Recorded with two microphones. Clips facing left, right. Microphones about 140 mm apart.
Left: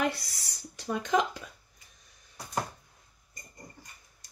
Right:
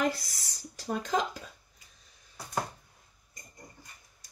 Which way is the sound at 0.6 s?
35° right (ahead or behind).